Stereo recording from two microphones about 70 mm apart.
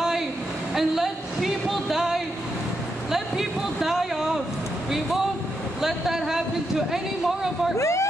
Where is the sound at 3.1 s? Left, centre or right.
Centre.